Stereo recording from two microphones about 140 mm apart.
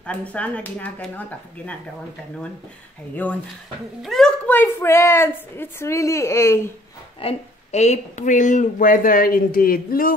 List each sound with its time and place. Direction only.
0.0 s speech: 10° left (ahead or behind)
4.0 s a child's voice: centre (ahead or behind)
4.5 s a woman's voice: 15° left (ahead or behind)
7.2 s a woman's voice: 50° left (ahead or behind); by 10.1 s 90° left